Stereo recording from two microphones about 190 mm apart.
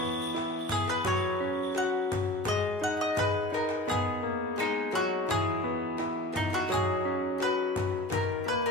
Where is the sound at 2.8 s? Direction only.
Centre (ahead or behind).